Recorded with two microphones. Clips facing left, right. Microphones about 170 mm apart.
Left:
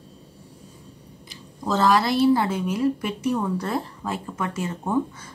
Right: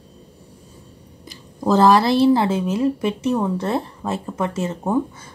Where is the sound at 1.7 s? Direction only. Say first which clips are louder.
Right 6 dB; 35° right (ahead or behind).